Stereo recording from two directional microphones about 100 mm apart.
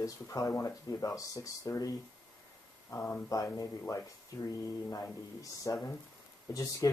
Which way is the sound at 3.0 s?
15° left (ahead or behind).